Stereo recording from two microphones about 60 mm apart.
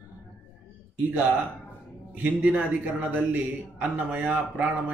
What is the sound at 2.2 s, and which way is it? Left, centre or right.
A man's voice, right.